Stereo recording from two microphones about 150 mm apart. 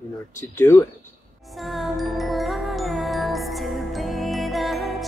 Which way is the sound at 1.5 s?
Centre (ahead or behind).